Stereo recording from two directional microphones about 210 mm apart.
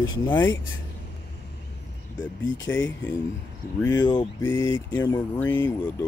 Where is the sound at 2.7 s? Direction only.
10° left (ahead or behind).